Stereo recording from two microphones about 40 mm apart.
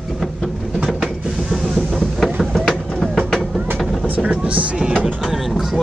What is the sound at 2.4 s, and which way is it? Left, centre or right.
Vehicle, centre.